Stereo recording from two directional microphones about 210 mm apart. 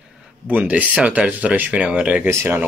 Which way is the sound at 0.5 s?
5° right (ahead or behind).